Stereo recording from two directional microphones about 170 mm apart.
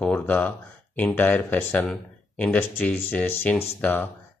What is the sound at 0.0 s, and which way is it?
Speech, 10° left (ahead or behind).